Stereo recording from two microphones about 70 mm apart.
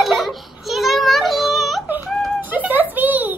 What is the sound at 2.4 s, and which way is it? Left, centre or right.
Music, right.